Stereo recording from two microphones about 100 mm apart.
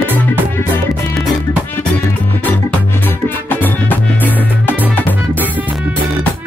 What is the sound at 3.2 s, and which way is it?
Music, 20° left (ahead or behind).